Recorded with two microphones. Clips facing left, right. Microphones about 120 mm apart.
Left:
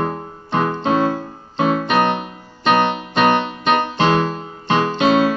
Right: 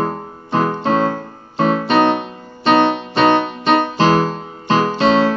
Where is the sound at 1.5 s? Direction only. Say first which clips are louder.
Right 2 dB; 30° right (ahead or behind).